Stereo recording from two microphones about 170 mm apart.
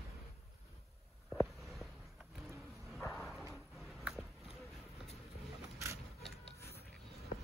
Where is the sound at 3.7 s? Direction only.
Centre (ahead or behind).